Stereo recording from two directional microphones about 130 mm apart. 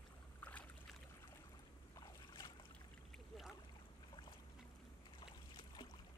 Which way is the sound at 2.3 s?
35° left (ahead or behind).